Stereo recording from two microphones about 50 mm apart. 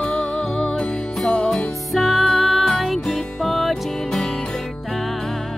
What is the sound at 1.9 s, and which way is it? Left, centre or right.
Music, centre.